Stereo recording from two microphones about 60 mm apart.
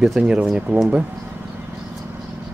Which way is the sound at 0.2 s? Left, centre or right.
Centre.